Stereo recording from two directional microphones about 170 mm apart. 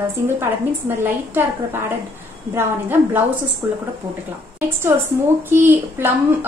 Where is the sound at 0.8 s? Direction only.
15° right (ahead or behind).